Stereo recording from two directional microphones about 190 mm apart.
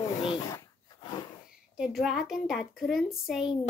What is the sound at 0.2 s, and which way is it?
Dog, 30° left (ahead or behind).